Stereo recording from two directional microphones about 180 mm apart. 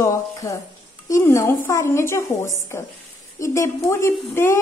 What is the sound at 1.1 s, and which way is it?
A woman's voice, 15° left (ahead or behind).